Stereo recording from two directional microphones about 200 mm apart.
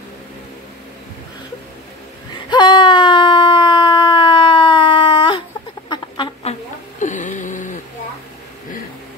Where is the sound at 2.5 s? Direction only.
20° left (ahead or behind).